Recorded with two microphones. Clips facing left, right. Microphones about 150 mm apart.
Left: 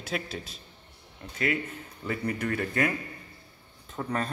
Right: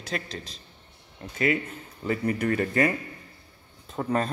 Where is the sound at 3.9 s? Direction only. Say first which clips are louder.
Right 5 dB; 25° right (ahead or behind).